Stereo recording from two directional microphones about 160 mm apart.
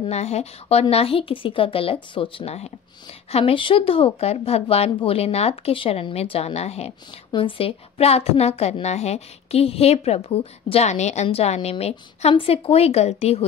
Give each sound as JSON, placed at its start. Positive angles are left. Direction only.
{"t": 0.0, "sound": "a woman's voice", "side_deg": 40}